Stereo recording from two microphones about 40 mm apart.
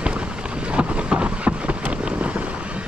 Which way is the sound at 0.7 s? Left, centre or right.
Right.